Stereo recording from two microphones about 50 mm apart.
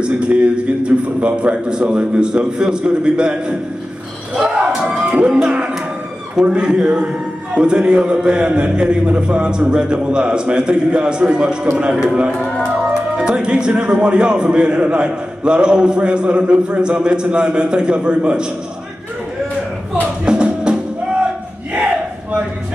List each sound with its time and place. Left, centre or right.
0.0 s speech: right
19.9 s music: centre